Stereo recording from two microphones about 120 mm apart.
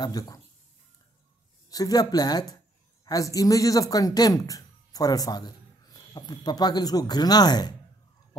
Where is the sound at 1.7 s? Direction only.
30° left (ahead or behind).